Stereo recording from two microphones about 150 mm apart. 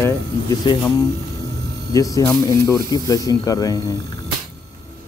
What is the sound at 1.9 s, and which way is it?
Speech, 25° left (ahead or behind).